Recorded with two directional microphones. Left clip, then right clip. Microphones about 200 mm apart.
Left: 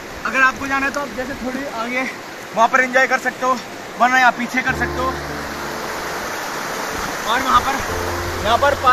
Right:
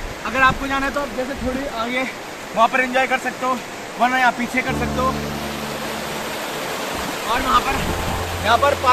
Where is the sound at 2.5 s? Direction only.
20° left (ahead or behind).